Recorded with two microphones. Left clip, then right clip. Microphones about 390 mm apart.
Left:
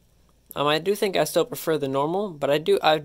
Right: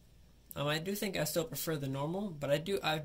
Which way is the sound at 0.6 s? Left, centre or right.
Centre.